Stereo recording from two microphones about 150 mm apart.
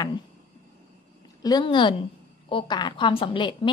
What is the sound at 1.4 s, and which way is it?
A woman's voice, 30° left (ahead or behind).